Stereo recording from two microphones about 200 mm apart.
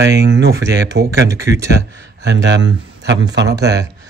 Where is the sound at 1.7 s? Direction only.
60° right (ahead or behind).